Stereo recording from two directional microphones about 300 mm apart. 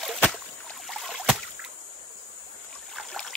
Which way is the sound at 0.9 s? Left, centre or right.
Centre.